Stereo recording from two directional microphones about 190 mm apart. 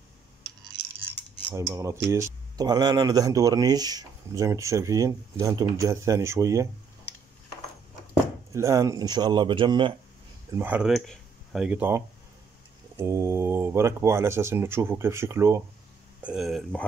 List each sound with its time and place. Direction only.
1.5 s speech: 15° right (ahead or behind)
8.5 s speech: 15° right (ahead or behind)
10.6 s speech: 5° right (ahead or behind)